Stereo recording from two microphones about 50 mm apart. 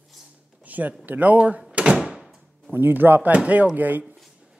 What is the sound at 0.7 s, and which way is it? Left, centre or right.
Speech, right.